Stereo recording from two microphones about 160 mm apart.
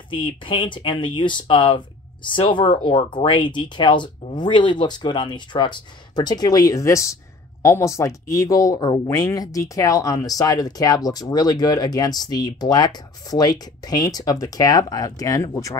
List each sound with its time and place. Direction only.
0.1 s speech: 30° left (ahead or behind)